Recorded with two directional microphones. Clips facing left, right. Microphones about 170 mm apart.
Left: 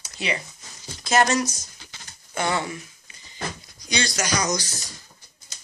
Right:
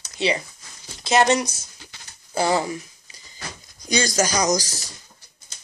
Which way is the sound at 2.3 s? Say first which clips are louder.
Right 4 dB; 35° right (ahead or behind).